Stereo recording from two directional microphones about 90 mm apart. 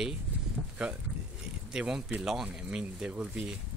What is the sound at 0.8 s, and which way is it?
Speech, 10° right (ahead or behind).